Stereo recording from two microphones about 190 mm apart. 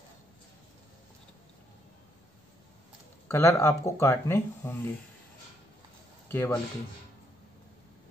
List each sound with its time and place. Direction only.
3.3 s speech: 15° left (ahead or behind)
6.3 s speech: 10° left (ahead or behind)